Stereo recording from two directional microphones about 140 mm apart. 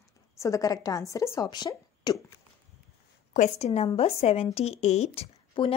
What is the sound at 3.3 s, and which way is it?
Speech, 55° left (ahead or behind).